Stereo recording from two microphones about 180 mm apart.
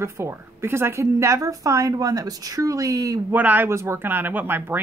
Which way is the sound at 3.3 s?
10° right (ahead or behind).